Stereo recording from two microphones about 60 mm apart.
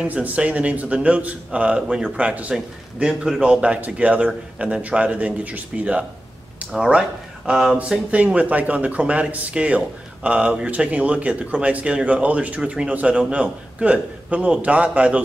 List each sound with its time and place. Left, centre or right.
0.0 s speech: right
6.7 s speech: centre
8.1 s speech: right